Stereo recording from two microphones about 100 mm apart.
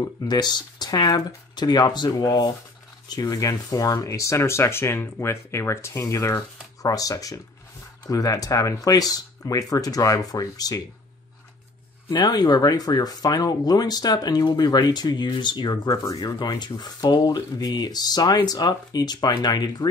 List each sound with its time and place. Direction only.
0.3 s speech: 45° left (ahead or behind)
12.1 s speech: 45° left (ahead or behind)